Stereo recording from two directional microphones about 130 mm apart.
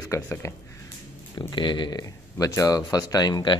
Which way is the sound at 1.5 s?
35° left (ahead or behind).